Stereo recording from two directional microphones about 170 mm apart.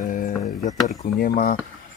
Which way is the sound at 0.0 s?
50° left (ahead or behind).